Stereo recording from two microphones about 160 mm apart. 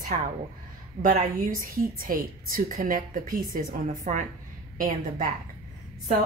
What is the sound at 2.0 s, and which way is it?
A woman's voice, 60° right (ahead or behind).